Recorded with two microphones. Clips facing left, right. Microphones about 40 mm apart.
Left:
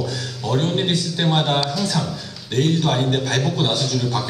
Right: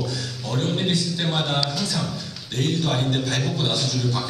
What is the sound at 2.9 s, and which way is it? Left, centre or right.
Speech, centre.